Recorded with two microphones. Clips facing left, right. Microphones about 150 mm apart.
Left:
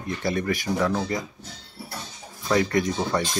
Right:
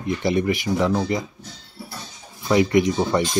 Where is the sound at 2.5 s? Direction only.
15° right (ahead or behind).